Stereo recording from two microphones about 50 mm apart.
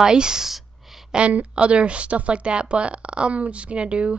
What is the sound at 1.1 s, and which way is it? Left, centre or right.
Speech, right.